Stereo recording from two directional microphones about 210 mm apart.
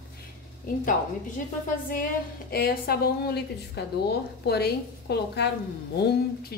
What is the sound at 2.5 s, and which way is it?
A woman's voice, 45° left (ahead or behind).